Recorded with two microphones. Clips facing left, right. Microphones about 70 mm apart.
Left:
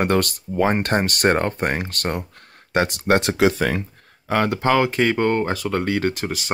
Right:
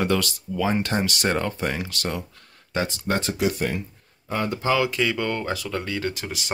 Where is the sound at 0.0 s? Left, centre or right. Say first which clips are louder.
Left 4 dB; left.